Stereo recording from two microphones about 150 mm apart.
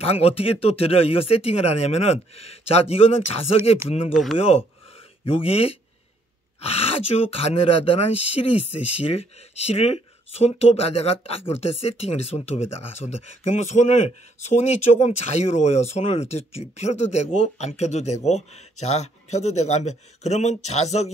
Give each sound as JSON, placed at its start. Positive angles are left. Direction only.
{"t": 0.0, "sound": "speech", "side_deg": 40}
{"t": 5.2, "sound": "speech", "side_deg": 40}